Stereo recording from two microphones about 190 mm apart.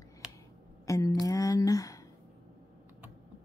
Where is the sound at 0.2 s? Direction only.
5° right (ahead or behind).